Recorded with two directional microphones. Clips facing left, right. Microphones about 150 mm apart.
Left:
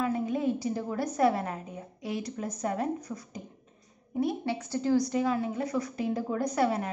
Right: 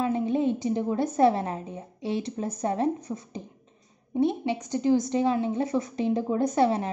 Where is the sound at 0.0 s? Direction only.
25° right (ahead or behind).